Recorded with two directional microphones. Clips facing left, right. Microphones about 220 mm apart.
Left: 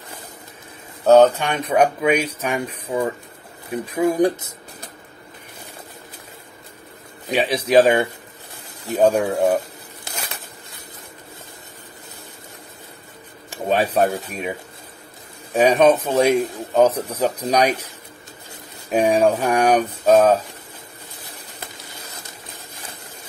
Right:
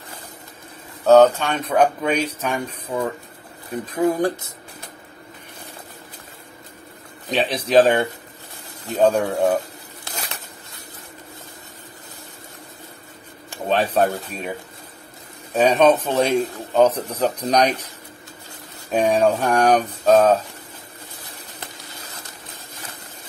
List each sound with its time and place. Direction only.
1.0 s a man's voice: 15° left (ahead or behind)
7.2 s a man's voice: 10° left (ahead or behind)
13.7 s a man's voice: 10° left (ahead or behind)
15.5 s a man's voice: 10° left (ahead or behind)
18.9 s a man's voice: 10° left (ahead or behind)